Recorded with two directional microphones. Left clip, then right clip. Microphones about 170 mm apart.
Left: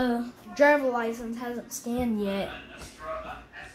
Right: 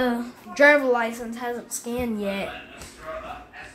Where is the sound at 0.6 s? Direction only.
20° right (ahead or behind).